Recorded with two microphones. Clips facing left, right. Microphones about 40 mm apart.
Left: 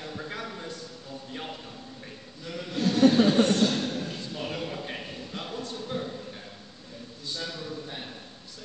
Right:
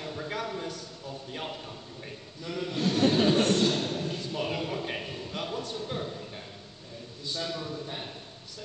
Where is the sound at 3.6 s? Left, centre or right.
Centre.